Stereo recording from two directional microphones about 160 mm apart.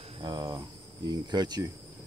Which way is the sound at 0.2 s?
25° right (ahead or behind).